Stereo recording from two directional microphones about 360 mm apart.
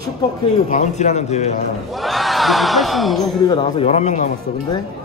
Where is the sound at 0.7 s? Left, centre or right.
Centre.